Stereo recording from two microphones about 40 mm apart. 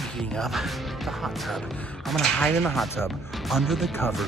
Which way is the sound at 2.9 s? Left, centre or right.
Centre.